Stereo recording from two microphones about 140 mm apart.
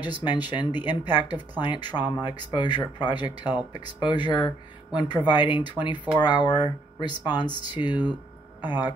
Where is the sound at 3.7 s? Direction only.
35° left (ahead or behind).